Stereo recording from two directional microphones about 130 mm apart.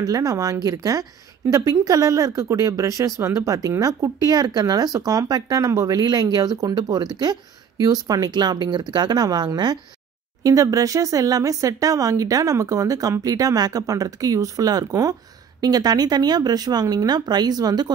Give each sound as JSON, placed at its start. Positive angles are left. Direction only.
{"t": 0.0, "sound": "speech", "side_deg": -25}